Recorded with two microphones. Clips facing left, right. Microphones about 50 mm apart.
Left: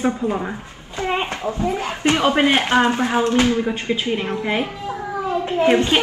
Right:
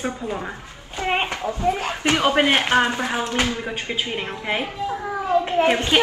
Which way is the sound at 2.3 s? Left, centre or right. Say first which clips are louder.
Left 1 dB; right.